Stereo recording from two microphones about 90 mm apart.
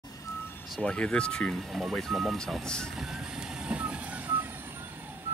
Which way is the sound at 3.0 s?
5° right (ahead or behind).